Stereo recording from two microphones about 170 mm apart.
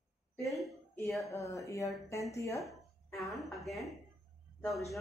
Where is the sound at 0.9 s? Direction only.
15° left (ahead or behind).